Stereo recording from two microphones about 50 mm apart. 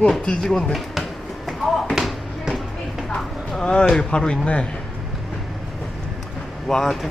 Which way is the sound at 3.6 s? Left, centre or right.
Centre.